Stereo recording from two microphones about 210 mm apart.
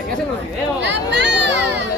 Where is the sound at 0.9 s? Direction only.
55° right (ahead or behind).